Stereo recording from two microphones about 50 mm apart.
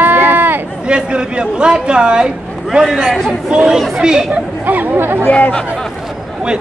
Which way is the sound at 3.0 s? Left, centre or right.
Centre.